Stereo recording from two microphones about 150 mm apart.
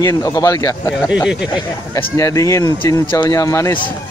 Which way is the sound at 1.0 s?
5° right (ahead or behind).